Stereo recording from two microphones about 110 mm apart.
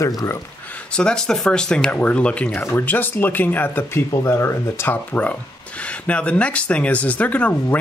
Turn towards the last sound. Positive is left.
turn(degrees=15)  # may be behind; listen again after turning